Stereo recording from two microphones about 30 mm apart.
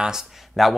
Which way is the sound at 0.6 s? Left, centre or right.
Centre.